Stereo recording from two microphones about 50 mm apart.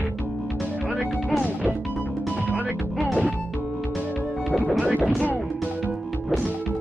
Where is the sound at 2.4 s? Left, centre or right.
Right.